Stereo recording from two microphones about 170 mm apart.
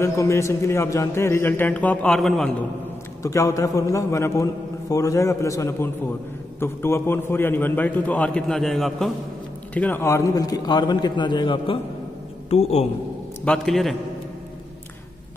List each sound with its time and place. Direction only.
0.0 s a man's voice: 15° left (ahead or behind); by 2.5 s centre (ahead or behind)
3.2 s a man's voice: 20° left (ahead or behind); by 12.8 s 40° left (ahead or behind)
13.5 s a man's voice: centre (ahead or behind)